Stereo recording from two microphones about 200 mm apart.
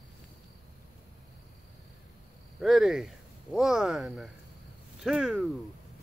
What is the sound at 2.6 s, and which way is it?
Speech, centre (ahead or behind).